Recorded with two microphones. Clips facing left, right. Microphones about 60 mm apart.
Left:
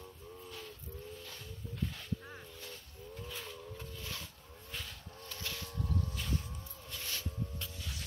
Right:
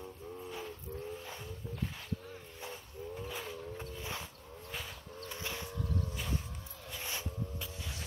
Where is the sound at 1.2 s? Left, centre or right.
Centre.